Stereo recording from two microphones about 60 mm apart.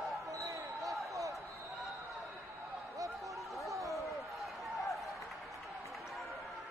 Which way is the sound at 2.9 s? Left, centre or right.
Right.